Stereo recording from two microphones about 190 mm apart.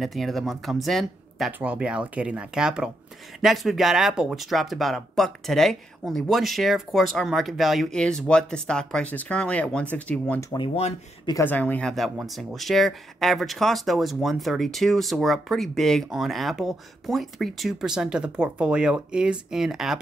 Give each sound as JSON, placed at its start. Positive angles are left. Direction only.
{"t": 0.0, "sound": "speech", "side_deg": 0}
{"t": 10.5, "sound": "speech", "side_deg": 30}
{"t": 11.2, "sound": "speech", "side_deg": 15}